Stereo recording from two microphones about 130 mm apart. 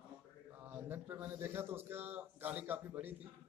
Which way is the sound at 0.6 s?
15° right (ahead or behind).